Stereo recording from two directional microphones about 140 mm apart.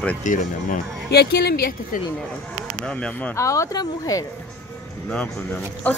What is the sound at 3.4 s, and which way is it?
Speech, 25° left (ahead or behind).